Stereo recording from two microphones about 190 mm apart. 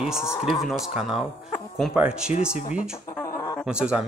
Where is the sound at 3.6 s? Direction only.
5° right (ahead or behind).